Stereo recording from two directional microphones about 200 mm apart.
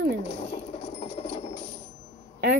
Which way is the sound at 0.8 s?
30° left (ahead or behind).